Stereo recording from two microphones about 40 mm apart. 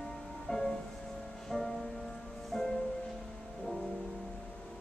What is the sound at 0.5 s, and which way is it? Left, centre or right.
Music, centre.